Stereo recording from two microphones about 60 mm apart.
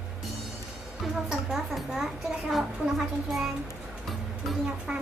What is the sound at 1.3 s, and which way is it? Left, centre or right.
A woman's voice, centre.